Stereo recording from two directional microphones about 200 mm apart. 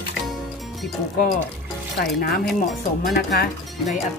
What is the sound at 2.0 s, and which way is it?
Speech, 50° left (ahead or behind).